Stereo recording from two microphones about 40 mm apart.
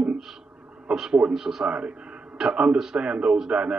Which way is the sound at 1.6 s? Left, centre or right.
Right.